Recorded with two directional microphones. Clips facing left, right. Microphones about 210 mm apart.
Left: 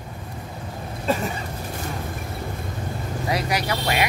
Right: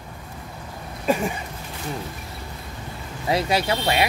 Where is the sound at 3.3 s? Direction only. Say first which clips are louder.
Right 4 dB; 25° right (ahead or behind).